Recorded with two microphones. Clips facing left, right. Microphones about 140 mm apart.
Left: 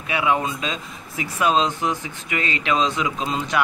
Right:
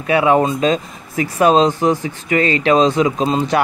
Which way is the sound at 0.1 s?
45° right (ahead or behind).